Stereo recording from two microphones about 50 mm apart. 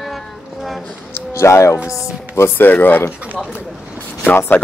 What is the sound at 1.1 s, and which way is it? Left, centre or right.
Music, left.